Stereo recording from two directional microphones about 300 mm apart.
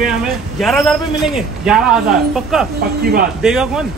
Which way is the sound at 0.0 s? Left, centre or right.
Centre.